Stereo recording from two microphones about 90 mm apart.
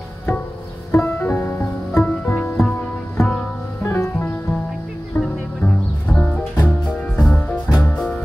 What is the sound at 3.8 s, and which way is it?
Music, 30° left (ahead or behind).